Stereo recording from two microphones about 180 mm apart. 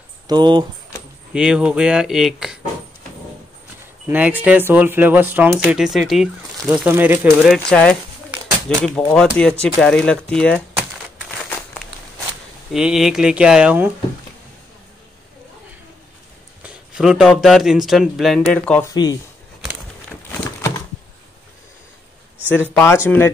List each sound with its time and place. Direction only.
0.3 s speech: 25° right (ahead or behind)
1.3 s speech: 5° right (ahead or behind)
4.1 s speech: 10° right (ahead or behind)
7.7 s speech: 5° left (ahead or behind)
12.7 s speech: centre (ahead or behind)
16.6 s a sound: 5° right (ahead or behind)
17.3 s speech: centre (ahead or behind)
22.8 s speech: 15° left (ahead or behind)